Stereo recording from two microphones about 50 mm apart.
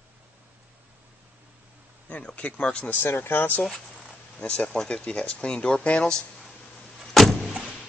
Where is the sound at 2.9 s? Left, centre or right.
Left.